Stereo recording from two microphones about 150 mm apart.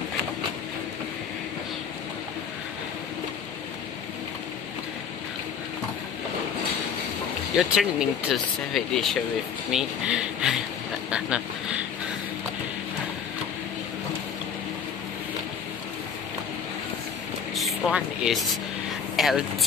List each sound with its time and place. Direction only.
7.5 s speech: 5° right (ahead or behind)
17.6 s speech: centre (ahead or behind)
19.1 s a sound: centre (ahead or behind)